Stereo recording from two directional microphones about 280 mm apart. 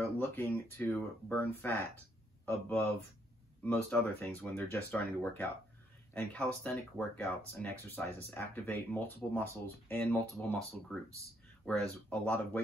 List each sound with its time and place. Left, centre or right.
0.0 s speech: centre